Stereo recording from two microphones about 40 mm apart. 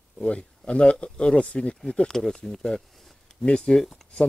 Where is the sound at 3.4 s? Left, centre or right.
Left.